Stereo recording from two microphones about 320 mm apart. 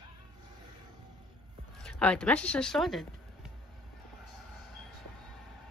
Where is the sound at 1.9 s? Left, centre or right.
Centre.